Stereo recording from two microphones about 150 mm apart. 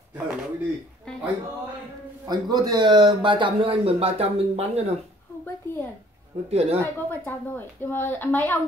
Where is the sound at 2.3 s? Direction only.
25° right (ahead or behind).